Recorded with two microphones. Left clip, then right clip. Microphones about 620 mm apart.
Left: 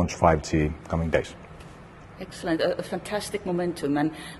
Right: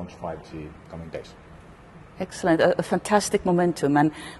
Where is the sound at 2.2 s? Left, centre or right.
Right.